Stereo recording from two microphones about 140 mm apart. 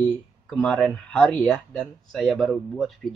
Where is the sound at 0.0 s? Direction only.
5° left (ahead or behind).